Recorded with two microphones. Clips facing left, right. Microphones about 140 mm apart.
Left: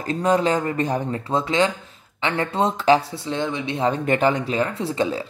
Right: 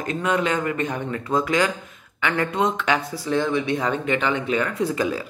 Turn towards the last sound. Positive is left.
turn(degrees=25)  # may be behind; listen again after turning